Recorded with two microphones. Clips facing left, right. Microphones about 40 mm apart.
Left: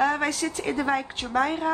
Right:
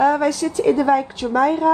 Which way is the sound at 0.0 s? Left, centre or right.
Left.